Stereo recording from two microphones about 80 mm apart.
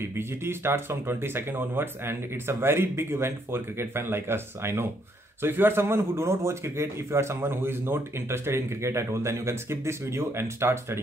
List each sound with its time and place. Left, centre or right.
0.0 s a man's voice: right